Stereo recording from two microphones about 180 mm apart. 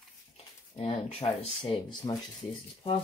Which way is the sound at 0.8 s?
30° left (ahead or behind).